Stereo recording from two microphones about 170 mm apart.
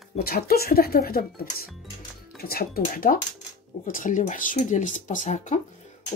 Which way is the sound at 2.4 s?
60° left (ahead or behind).